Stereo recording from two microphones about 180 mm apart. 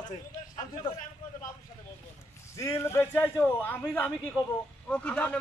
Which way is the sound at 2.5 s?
15° left (ahead or behind).